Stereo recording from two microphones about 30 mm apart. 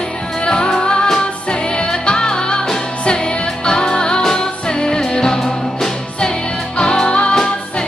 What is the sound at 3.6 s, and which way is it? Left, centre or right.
Music, left.